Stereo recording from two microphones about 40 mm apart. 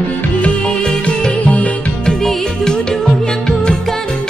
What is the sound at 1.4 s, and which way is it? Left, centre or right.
Music, left.